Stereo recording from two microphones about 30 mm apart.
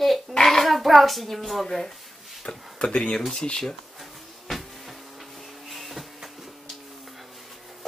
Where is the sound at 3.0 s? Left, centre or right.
Centre.